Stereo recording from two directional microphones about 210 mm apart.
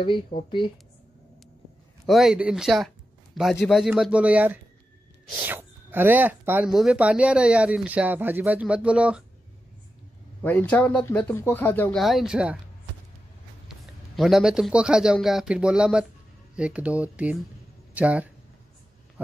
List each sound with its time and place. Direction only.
0.3 s speech: 40° left (ahead or behind)
2.0 s speech: centre (ahead or behind)
10.4 s speech: 10° left (ahead or behind)
13.7 s a man's voice: centre (ahead or behind)